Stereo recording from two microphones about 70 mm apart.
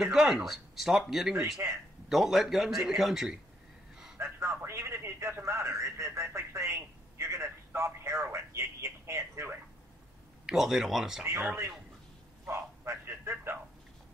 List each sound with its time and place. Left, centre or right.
0.0 s speech: centre
1.6 s speech: right
2.0 s speech: centre
4.2 s a man's voice: right
10.4 s speech: centre
12.4 s a sound: right